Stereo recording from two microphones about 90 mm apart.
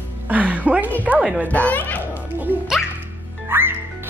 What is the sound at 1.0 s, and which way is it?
Speech, 15° right (ahead or behind).